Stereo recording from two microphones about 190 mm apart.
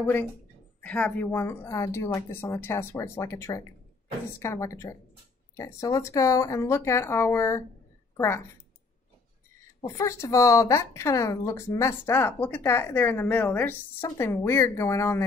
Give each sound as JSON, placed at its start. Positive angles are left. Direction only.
{"t": 0.0, "sound": "speech", "side_deg": 10}
{"t": 9.8, "sound": "speech", "side_deg": 15}